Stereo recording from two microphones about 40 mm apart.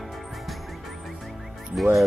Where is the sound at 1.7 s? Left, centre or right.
Centre.